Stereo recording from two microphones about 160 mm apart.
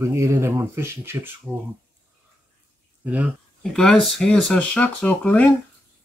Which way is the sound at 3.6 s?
5° left (ahead or behind).